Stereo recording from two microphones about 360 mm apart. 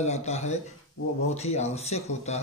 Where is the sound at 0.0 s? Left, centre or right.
Centre.